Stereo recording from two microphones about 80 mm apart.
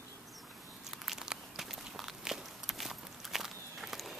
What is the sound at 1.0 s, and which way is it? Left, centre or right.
Walk, centre.